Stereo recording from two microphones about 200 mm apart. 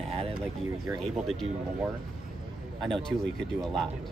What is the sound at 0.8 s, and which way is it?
Speech, centre (ahead or behind).